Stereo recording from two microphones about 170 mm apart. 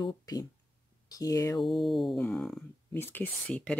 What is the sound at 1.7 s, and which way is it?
Speech, centre (ahead or behind).